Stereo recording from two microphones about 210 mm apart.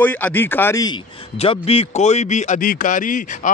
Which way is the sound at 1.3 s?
30° left (ahead or behind).